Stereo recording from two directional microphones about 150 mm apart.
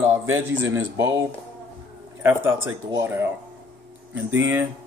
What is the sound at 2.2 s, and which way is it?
A man's voice, 15° right (ahead or behind).